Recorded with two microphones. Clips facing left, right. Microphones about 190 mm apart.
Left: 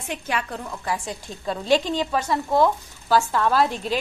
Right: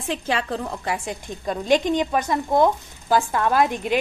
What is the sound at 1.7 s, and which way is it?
Speech, 20° right (ahead or behind).